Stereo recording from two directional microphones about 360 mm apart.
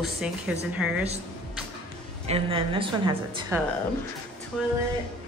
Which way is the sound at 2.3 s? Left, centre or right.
Centre.